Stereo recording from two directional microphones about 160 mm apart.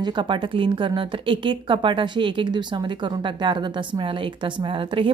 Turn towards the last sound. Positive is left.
turn(degrees=-35)  # may be behind; listen again after turning